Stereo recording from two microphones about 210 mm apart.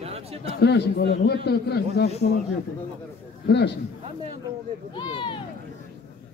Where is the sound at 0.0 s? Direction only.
30° right (ahead or behind).